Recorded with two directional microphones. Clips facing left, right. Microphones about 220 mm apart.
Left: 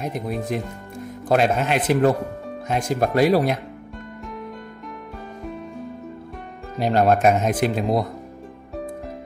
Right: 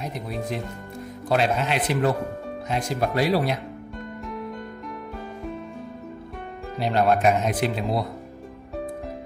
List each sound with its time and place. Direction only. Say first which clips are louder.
0.0 s speech: left 4 dB; 50° left (ahead or behind)
6.8 s speech: left 3 dB; 45° left (ahead or behind)